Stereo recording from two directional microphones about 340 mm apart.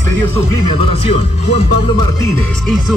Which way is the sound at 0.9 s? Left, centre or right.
Centre.